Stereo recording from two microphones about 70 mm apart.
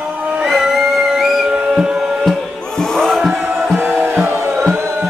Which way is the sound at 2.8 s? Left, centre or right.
Centre.